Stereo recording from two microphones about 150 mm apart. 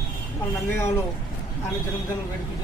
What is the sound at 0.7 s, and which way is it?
Speech, 15° left (ahead or behind).